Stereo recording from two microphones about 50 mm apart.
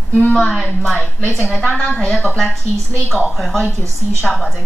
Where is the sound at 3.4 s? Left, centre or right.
Centre.